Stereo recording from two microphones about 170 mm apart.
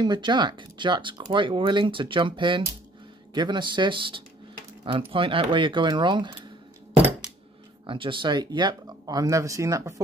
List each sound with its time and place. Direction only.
0.0 s speech: 25° right (ahead or behind)
7.8 s speech: 30° right (ahead or behind)